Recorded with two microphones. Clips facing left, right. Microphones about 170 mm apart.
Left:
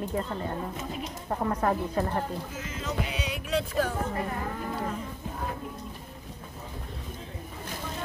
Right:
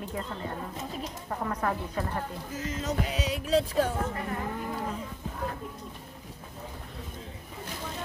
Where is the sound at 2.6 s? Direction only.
40° right (ahead or behind).